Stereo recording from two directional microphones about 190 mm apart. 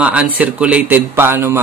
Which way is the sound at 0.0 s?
5° right (ahead or behind).